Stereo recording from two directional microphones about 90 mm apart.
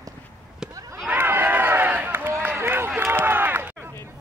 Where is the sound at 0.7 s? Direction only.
40° right (ahead or behind).